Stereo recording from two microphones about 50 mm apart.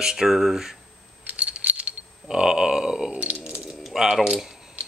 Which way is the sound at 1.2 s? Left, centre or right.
Right.